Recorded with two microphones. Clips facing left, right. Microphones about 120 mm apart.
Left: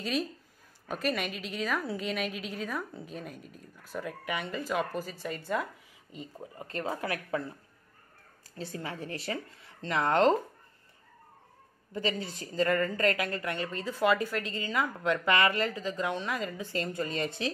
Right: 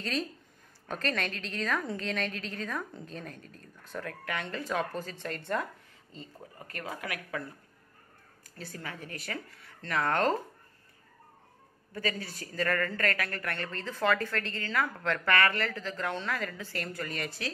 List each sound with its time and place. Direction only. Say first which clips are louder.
0.0 s speech: left 2 dB; 10° left (ahead or behind)
6.1 s speech: left 4 dB; 15° left (ahead or behind)
6.7 s speech: left 5 dB; 25° left (ahead or behind)
8.5 s speech: left 4 dB; 25° left (ahead or behind)
11.9 s speech: left 2 dB; 25° left (ahead or behind)